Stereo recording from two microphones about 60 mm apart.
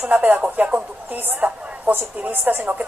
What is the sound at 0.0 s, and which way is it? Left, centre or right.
A woman's voice, right.